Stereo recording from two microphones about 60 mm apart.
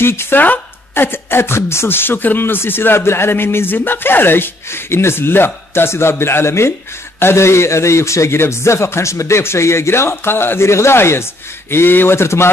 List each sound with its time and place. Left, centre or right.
0.0 s a man's voice: left
0.4 s a man's voice: left